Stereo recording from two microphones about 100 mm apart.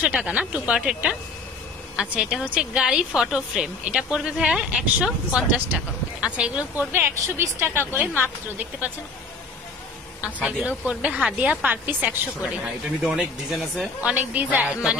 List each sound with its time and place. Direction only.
0.0 s speech: 10° right (ahead or behind)
6.9 s a woman's voice: 20° right (ahead or behind)
10.2 s speech: 10° right (ahead or behind)